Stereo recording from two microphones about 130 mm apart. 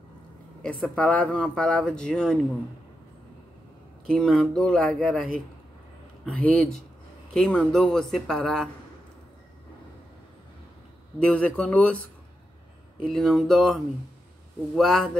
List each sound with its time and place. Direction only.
0.6 s speech: 5° left (ahead or behind)
4.1 s speech: centre (ahead or behind)
11.1 s speech: 10° left (ahead or behind)
13.0 s speech: 5° left (ahead or behind)